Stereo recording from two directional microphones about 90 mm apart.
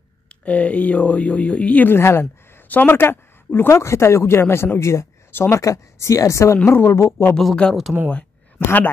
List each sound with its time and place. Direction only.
0.3 s a woman's voice: 15° left (ahead or behind)
7.3 s speech: 10° left (ahead or behind)
8.5 s speech: 20° left (ahead or behind)